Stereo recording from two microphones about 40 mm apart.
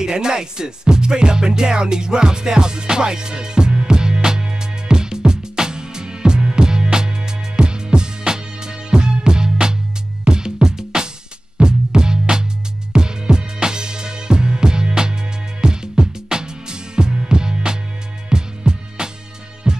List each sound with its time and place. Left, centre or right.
0.0 s music: centre